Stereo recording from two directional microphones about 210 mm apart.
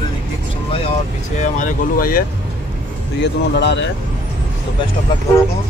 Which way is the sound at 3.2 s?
55° left (ahead or behind).